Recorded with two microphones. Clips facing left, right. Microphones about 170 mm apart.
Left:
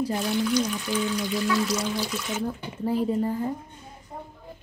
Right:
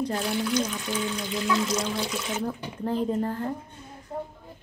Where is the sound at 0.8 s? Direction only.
20° right (ahead or behind).